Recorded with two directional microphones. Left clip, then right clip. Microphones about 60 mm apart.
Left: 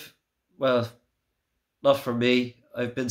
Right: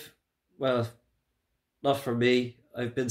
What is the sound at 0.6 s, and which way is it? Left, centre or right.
Speech, left.